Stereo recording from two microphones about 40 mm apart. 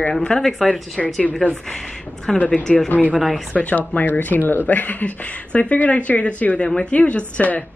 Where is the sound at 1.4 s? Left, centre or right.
Left.